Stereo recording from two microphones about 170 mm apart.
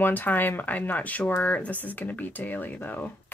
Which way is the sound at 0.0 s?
10° left (ahead or behind).